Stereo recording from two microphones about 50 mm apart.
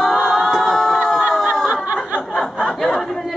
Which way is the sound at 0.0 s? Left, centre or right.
Centre.